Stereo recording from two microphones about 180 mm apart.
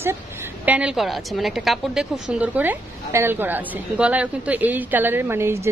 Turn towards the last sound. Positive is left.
turn(degrees=-15)  # may be behind; listen again after turning